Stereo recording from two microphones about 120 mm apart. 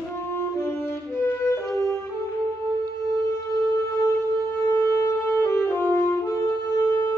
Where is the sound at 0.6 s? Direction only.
20° left (ahead or behind).